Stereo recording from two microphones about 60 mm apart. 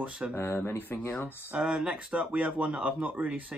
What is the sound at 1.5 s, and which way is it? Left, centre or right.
Speech, centre.